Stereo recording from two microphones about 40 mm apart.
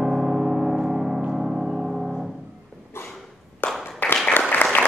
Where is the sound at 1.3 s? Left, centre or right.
Centre.